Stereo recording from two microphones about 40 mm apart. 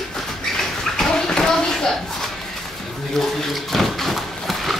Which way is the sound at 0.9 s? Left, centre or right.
Centre.